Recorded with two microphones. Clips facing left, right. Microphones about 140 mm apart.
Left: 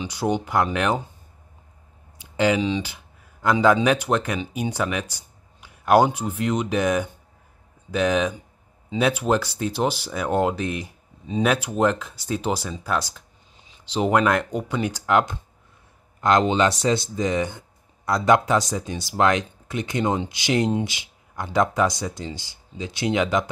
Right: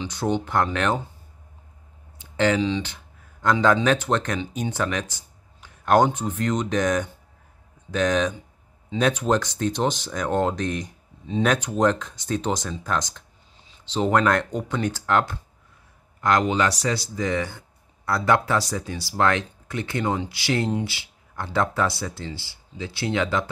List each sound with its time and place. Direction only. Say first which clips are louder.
0.0 s speech: left 1 dB; 10° left (ahead or behind)
2.1 s speech: left 1 dB; 10° left (ahead or behind)